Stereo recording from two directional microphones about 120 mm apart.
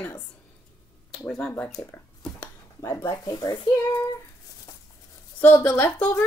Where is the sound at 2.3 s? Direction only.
20° left (ahead or behind).